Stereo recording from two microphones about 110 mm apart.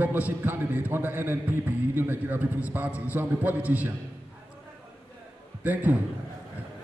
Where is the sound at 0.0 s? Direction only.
15° right (ahead or behind).